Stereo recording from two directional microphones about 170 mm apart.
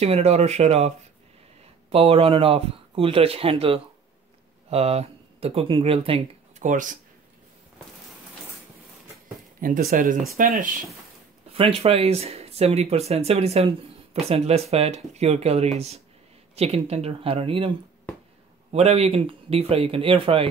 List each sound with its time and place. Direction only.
0.0 s speech: 40° right (ahead or behind)
6.6 s speech: 50° right (ahead or behind)
9.6 s speech: 55° right (ahead or behind)
11.5 s speech: 35° right (ahead or behind)